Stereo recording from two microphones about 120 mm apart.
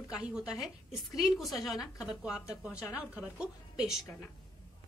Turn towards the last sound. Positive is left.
turn(degrees=-5)  # may be behind; listen again after turning